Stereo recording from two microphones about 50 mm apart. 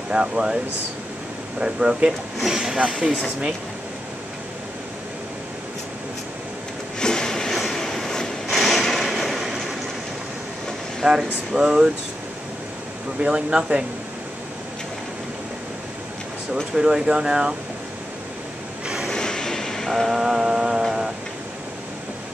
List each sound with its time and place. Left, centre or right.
0.1 s speech: centre
1.6 s speech: centre
7.0 s a sound: centre
7.6 s train: centre
8.5 s a sound: centre
11.1 s speech: centre
13.2 s speech: centre
16.7 s speech: centre
19.0 s vehicle: centre
20.1 s mantra: centre